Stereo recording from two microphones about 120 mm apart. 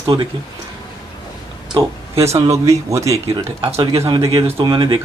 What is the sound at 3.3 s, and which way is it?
Speech, 40° right (ahead or behind).